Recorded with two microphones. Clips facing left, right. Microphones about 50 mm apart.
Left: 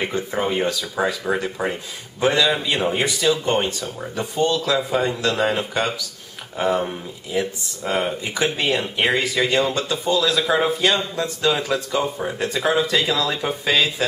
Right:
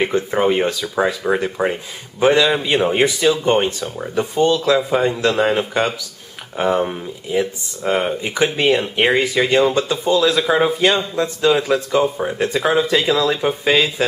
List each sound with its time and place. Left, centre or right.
0.0 s speech: centre
10.2 s speech: centre